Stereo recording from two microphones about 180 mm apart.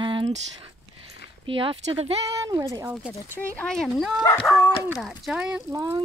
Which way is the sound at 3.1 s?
10° left (ahead or behind).